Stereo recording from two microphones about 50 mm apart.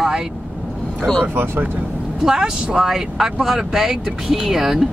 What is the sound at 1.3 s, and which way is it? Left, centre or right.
Speech, right.